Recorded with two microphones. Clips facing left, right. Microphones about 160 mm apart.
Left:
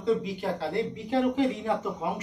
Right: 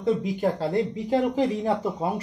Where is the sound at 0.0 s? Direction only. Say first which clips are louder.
Right 3 dB; 45° right (ahead or behind).